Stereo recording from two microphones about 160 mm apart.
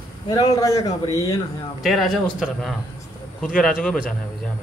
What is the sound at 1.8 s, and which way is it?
Speech, centre (ahead or behind).